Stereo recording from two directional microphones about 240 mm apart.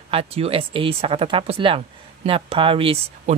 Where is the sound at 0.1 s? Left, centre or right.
Right.